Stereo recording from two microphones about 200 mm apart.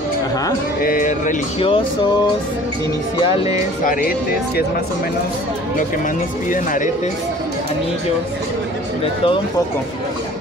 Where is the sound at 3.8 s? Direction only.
45° left (ahead or behind).